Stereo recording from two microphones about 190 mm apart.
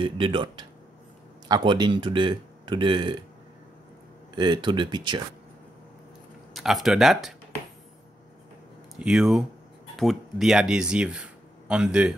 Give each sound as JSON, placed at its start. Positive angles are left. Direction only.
{"t": 0.0, "sound": "speech", "side_deg": -25}
{"t": 4.4, "sound": "speech", "side_deg": -25}
{"t": 6.5, "sound": "speech", "side_deg": 0}
{"t": 9.0, "sound": "speech", "side_deg": 0}